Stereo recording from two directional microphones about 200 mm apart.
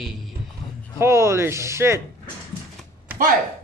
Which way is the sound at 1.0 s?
15° right (ahead or behind).